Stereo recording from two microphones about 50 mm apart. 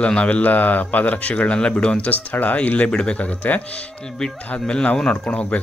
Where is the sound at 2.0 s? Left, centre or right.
Left.